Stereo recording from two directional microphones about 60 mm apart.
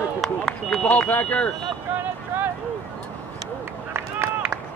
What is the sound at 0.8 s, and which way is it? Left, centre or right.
Speech, left.